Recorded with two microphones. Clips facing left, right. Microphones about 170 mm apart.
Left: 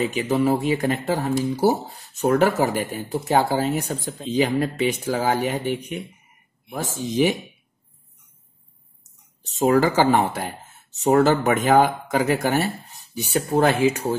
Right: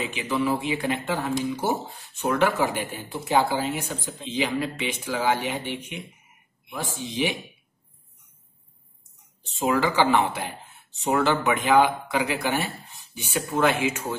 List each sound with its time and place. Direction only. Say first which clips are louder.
0.0 s speech: left 5 dB; 40° left (ahead or behind)
9.4 s speech: left 6 dB; 40° left (ahead or behind)